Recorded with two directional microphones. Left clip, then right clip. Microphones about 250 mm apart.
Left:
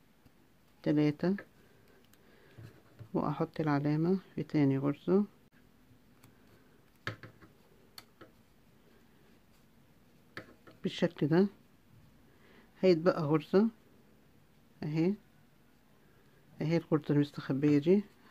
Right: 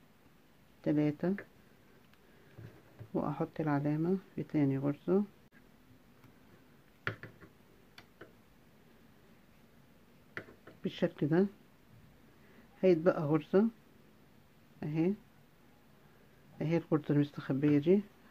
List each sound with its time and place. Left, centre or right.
0.8 s speech: centre
3.1 s speech: centre
10.8 s speech: centre
12.8 s speech: centre
14.8 s speech: centre
16.5 s speech: centre